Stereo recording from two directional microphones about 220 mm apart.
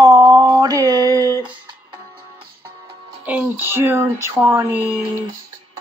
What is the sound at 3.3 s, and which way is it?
Speech, 10° right (ahead or behind).